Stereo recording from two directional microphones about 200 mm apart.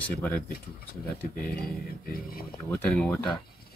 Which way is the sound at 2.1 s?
45° left (ahead or behind).